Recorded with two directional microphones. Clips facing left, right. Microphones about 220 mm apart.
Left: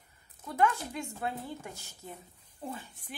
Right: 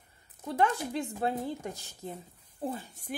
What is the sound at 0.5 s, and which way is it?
Speech, 35° right (ahead or behind).